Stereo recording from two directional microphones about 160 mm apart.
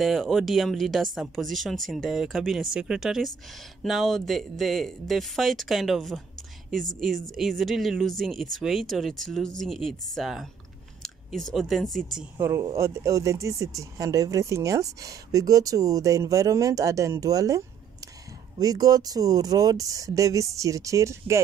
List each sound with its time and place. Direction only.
0.0 s speech: centre (ahead or behind)
7.3 s speech: centre (ahead or behind)
12.4 s speech: 15° right (ahead or behind)